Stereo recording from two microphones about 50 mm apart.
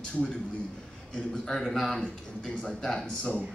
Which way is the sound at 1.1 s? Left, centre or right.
Centre.